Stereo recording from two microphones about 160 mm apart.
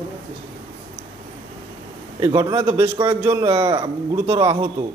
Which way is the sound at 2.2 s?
25° right (ahead or behind).